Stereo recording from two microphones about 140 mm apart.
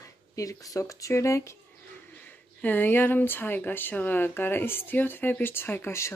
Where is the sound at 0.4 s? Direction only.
25° left (ahead or behind).